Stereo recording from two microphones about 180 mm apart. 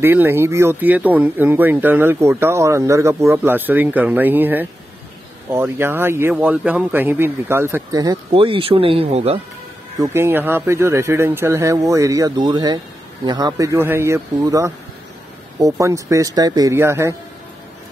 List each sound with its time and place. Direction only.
0.0 s speech: 10° right (ahead or behind); by 9.4 s 35° right (ahead or behind)
9.9 s speech: 15° right (ahead or behind)